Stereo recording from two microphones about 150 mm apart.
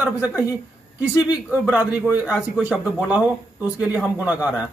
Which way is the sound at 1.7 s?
10° right (ahead or behind).